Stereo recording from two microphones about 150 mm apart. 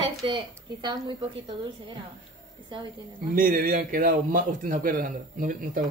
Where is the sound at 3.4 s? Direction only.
70° right (ahead or behind).